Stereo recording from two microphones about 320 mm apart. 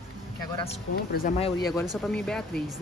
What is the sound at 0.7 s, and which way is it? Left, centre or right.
Speech, left.